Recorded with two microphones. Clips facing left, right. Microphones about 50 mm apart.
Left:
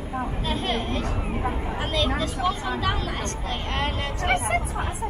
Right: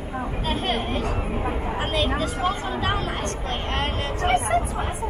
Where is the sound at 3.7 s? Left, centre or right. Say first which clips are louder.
Even; centre.